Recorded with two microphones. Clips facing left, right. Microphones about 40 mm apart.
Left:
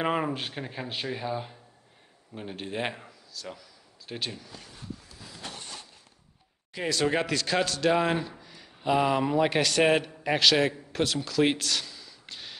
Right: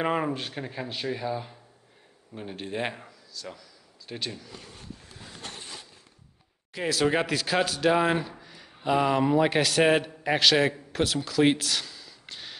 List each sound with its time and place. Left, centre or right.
0.0 s a man's voice: centre
5.2 s a sound: right
6.7 s speech: centre